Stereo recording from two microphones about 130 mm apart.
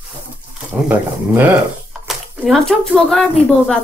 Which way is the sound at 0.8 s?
15° right (ahead or behind).